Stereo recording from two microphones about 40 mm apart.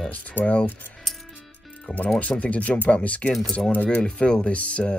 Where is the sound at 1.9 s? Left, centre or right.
Left.